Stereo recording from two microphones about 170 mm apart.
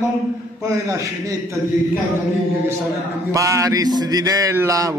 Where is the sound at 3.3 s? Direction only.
20° right (ahead or behind).